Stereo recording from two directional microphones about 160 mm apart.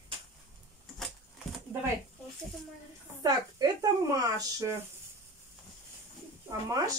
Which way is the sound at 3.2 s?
25° right (ahead or behind).